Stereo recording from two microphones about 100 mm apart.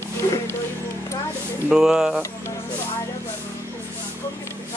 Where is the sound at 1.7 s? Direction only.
5° right (ahead or behind).